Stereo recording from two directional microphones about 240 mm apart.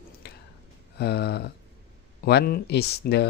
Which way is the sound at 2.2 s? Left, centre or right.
Left.